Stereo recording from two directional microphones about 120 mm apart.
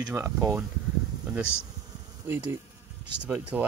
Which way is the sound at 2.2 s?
15° right (ahead or behind).